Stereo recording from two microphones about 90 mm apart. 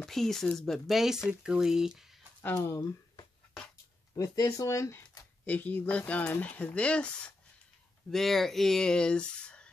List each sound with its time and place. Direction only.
0.0 s speech: 5° left (ahead or behind)
2.5 s speech: 30° left (ahead or behind)
4.1 s speech: 40° left (ahead or behind)
5.4 s speech: 15° left (ahead or behind)